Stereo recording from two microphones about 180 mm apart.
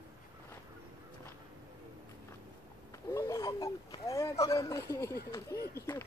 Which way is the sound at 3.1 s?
15° left (ahead or behind).